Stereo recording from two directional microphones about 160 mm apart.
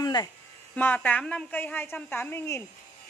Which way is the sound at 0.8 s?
10° left (ahead or behind).